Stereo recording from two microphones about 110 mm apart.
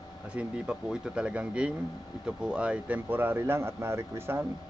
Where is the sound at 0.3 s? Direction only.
10° right (ahead or behind).